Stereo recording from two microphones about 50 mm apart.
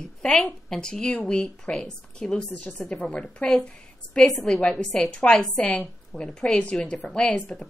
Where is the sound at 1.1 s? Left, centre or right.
Left.